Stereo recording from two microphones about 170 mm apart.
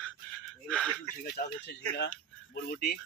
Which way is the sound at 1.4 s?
55° left (ahead or behind).